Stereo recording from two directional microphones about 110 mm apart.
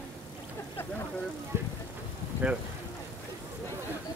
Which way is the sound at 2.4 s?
10° right (ahead or behind).